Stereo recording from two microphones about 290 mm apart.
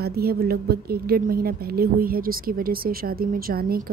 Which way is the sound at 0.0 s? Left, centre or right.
Right.